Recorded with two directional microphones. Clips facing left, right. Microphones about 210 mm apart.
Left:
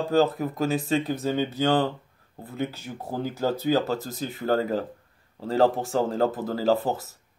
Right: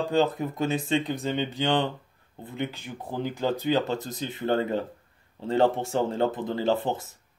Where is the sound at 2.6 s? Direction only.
10° left (ahead or behind).